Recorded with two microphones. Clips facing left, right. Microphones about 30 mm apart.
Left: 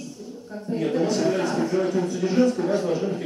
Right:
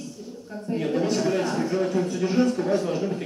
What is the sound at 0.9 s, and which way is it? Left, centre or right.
Speech, centre.